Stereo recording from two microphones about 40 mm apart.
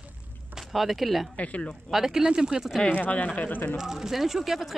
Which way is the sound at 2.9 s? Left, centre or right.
Left.